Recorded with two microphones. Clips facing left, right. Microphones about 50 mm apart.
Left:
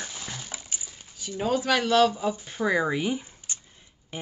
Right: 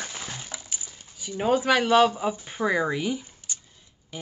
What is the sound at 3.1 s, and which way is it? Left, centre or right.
Camera, left.